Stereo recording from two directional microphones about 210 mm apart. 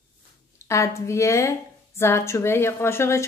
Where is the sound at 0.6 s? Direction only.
15° left (ahead or behind).